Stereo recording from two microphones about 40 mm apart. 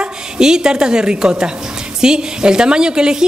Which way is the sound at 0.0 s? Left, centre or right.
Centre.